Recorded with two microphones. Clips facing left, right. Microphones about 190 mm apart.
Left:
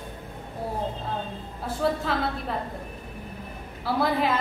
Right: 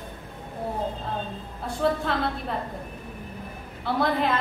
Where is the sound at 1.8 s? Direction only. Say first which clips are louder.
Right 1 dB; centre (ahead or behind).